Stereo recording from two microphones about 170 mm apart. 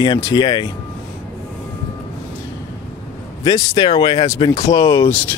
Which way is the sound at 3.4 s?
25° left (ahead or behind).